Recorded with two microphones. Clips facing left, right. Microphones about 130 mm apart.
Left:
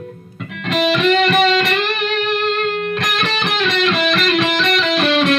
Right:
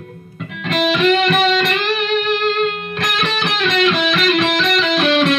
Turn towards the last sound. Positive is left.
turn(degrees=0)  # may be behind; listen again after turning